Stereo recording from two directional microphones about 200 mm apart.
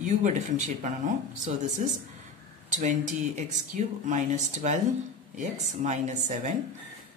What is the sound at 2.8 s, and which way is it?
Speech, 35° right (ahead or behind).